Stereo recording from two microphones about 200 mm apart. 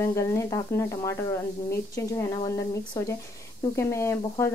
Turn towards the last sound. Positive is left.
turn(degrees=15)  # may be behind; listen again after turning